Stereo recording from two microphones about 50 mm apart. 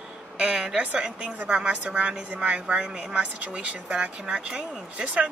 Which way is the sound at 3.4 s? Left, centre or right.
Right.